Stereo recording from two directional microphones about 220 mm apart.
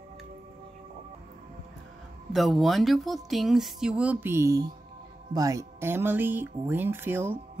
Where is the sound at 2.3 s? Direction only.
Centre (ahead or behind).